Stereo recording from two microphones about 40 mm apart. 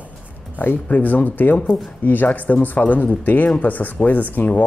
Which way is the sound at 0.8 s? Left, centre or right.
Left.